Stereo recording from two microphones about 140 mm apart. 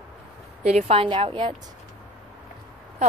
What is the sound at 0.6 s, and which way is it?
Speech, 50° right (ahead or behind).